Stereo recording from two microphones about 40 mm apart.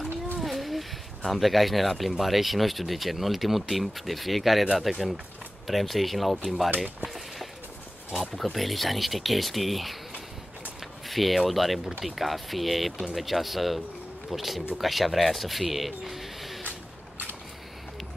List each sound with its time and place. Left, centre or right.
0.4 s speech: centre
8.5 s speech: centre
11.1 s speech: centre